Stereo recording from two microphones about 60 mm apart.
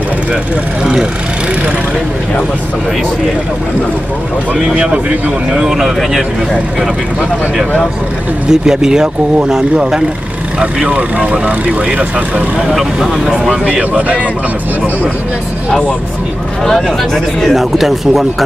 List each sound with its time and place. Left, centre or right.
5.5 s speech: centre
8.5 s speech: centre
12.7 s speech: centre
13.7 s speech: right
16.6 s speech: centre